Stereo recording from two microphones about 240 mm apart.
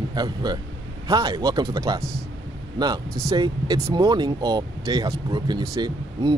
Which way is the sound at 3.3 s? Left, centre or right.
Centre.